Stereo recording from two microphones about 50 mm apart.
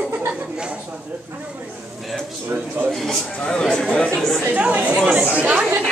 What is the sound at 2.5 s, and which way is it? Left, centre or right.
Speech, right.